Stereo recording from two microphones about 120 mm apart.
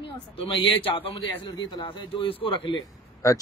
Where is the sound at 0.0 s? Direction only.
45° left (ahead or behind).